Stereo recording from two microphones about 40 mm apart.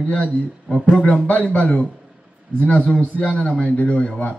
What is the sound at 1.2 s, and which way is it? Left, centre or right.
Speech, left.